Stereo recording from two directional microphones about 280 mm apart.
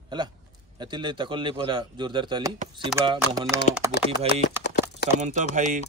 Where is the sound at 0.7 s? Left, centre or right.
Centre.